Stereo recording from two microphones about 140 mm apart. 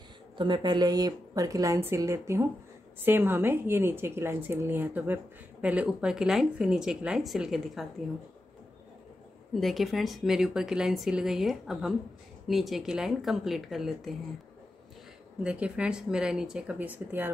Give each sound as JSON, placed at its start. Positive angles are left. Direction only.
{"t": 0.4, "sound": "a woman's voice", "side_deg": -30}
{"t": 9.5, "sound": "speech", "side_deg": 0}
{"t": 15.4, "sound": "a woman's voice", "side_deg": -10}